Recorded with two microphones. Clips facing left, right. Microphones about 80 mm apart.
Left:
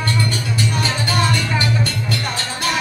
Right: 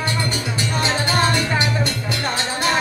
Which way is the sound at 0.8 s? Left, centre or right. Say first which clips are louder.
Right 4 dB; right.